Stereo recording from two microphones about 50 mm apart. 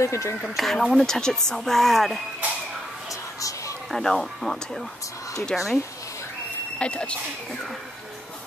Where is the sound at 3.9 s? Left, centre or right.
Centre.